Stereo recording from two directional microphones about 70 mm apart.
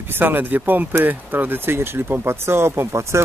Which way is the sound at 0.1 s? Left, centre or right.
Right.